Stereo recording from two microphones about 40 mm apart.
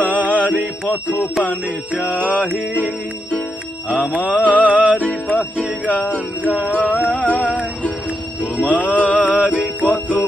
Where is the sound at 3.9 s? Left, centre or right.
Right.